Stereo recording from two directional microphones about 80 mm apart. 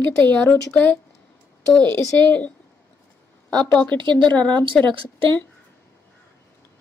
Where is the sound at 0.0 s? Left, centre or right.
Left.